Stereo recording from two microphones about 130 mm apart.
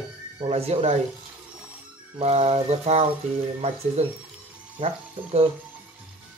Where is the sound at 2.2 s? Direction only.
55° right (ahead or behind).